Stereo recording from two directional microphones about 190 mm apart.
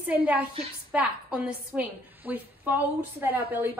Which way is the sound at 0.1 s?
10° right (ahead or behind).